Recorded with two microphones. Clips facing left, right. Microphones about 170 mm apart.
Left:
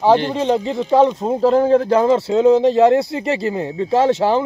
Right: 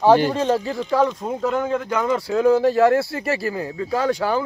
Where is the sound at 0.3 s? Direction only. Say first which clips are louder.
Left 3 dB; 20° left (ahead or behind).